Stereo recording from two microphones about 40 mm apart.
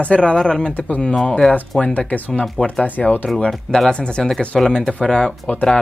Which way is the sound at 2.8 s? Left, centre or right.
Left.